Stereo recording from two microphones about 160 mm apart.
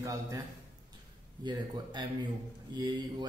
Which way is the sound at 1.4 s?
25° right (ahead or behind).